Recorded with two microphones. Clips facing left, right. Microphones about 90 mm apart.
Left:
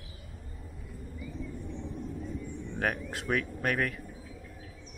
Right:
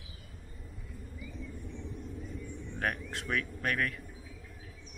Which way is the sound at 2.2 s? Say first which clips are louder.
Left 4 dB; centre (ahead or behind).